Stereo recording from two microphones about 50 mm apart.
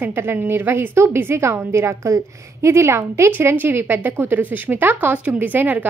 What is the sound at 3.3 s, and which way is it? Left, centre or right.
A woman's voice, right.